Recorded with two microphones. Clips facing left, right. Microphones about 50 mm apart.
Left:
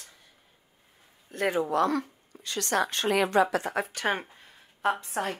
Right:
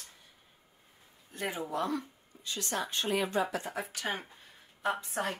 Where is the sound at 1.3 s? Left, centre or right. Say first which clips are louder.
Left 9 dB; left.